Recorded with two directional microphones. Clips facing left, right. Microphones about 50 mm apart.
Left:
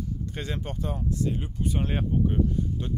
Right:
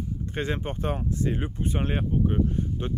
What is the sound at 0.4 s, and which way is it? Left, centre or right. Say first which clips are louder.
Speech: right 6 dB; right.